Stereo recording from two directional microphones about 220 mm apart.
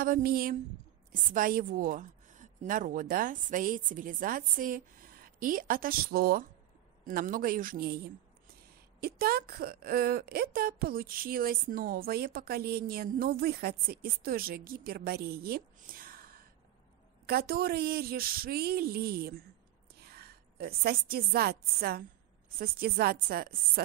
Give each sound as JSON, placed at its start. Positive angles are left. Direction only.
{"t": 0.0, "sound": "a woman's voice", "side_deg": -40}